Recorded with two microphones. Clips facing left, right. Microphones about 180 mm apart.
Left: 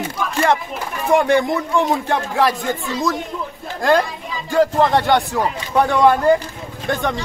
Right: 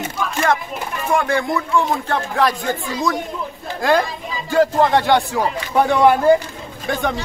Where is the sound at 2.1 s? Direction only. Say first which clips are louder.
Left 1 dB; 5° left (ahead or behind).